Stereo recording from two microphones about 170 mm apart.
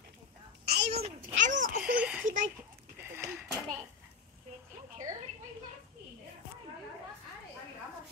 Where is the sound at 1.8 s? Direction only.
5° right (ahead or behind).